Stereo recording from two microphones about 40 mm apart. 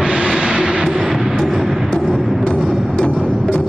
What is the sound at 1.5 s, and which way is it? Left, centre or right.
Music, centre.